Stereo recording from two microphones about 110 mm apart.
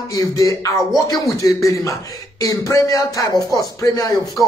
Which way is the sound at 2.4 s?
30° left (ahead or behind).